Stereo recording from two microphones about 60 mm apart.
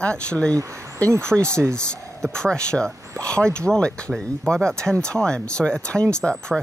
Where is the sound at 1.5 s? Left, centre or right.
Right.